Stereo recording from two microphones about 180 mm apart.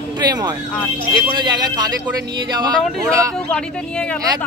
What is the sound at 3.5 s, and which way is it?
Speech, 5° left (ahead or behind).